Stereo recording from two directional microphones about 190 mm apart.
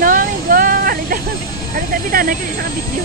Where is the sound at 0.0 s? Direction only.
45° right (ahead or behind).